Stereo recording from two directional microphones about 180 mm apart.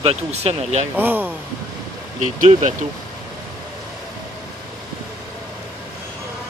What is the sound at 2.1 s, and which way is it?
Speech, 40° right (ahead or behind).